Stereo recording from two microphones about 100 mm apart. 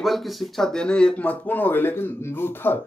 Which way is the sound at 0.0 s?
Centre (ahead or behind).